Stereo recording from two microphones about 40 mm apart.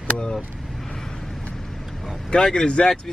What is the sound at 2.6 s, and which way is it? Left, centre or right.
Speech, left.